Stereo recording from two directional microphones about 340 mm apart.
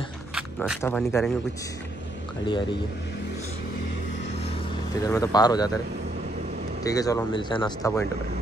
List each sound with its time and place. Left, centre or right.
0.3 s speech: centre
2.4 s speech: centre
5.0 s speech: centre
6.8 s speech: centre